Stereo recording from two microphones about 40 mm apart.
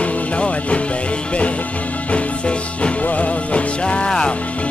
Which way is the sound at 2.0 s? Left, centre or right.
Left.